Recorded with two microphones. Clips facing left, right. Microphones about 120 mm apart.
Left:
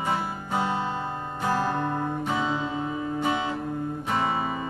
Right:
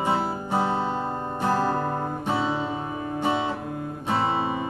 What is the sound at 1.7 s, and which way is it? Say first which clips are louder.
Music: right 1 dB; 35° right (ahead or behind).